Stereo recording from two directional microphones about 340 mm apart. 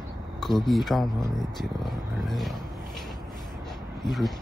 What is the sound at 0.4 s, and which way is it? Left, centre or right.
Speech, centre.